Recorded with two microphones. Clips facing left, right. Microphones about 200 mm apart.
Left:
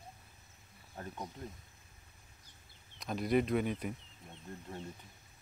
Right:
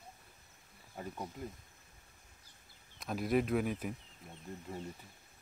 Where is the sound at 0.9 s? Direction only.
5° right (ahead or behind).